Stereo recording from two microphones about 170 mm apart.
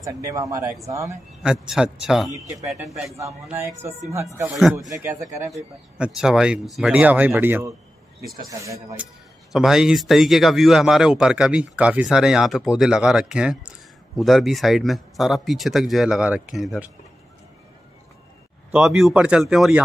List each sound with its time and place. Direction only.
0.0 s speech: 20° right (ahead or behind)
1.4 s speech: 5° right (ahead or behind)
3.2 s speech: 15° right (ahead or behind)
4.5 s speech: centre (ahead or behind)
4.7 s speech: 20° right (ahead or behind)
5.5 s speech: 5° right (ahead or behind)
9.5 s speech: 5° right (ahead or behind)
18.7 s speech: 5° right (ahead or behind)